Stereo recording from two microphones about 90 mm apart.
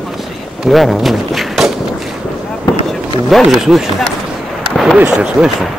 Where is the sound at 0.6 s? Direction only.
Centre (ahead or behind).